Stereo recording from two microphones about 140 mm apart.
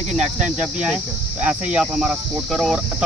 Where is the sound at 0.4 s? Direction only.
10° right (ahead or behind).